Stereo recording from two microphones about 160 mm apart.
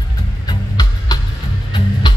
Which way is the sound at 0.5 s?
25° left (ahead or behind).